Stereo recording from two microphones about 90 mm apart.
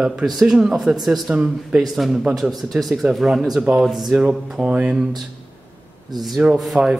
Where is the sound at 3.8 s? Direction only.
Centre (ahead or behind).